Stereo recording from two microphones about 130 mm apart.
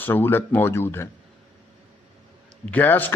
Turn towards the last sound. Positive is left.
turn(degrees=15)  # may be behind; listen again after turning